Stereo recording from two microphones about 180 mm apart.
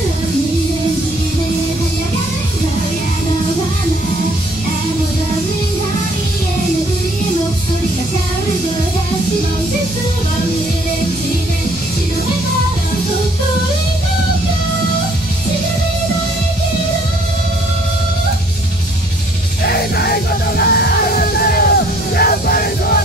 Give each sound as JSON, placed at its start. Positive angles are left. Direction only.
{"t": 20.0, "sound": "music", "side_deg": 60}